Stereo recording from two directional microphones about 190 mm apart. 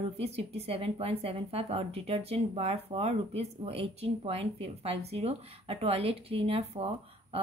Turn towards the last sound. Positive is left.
turn(degrees=-30)  # may be behind; listen again after turning